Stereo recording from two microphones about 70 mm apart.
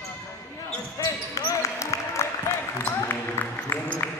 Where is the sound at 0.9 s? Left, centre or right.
Left.